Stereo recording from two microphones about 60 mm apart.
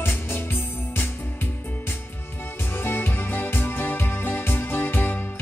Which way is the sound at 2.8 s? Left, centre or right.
Left.